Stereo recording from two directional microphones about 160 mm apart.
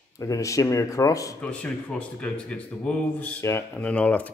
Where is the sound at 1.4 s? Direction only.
10° left (ahead or behind).